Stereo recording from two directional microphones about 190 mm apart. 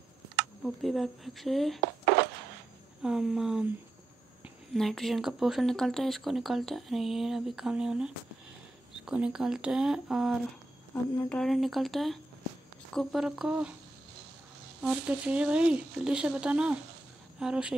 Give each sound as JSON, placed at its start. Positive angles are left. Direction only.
{"t": 0.8, "sound": "speech", "side_deg": 0}
{"t": 3.0, "sound": "speech", "side_deg": -5}
{"t": 4.7, "sound": "speech", "side_deg": 0}
{"t": 14.8, "sound": "speech", "side_deg": -5}